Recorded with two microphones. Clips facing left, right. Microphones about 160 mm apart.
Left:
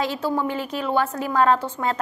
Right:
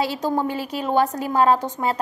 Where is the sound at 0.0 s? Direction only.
10° right (ahead or behind).